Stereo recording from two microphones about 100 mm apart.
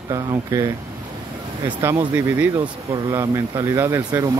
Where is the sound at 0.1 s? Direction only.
30° right (ahead or behind).